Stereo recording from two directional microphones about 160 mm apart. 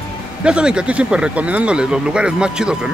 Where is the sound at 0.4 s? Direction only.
5° right (ahead or behind).